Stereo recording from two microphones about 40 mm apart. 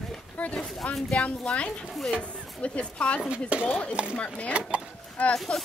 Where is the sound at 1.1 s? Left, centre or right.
Left.